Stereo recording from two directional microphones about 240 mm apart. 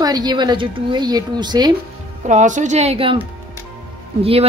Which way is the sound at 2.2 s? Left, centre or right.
Right.